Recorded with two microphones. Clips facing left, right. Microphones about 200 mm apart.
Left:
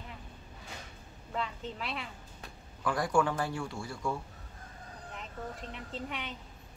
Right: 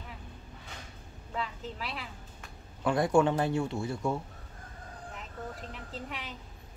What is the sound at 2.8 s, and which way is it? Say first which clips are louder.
A man's voice: right 4 dB; 25° right (ahead or behind).